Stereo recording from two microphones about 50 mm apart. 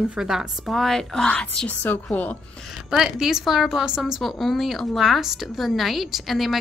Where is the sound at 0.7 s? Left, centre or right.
Centre.